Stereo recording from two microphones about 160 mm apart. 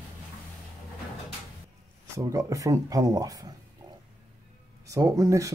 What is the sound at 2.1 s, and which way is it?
Speech, 20° right (ahead or behind).